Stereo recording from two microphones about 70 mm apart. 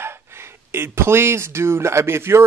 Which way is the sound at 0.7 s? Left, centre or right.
Right.